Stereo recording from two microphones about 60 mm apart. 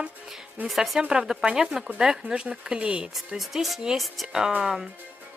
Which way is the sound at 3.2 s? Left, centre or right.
Centre.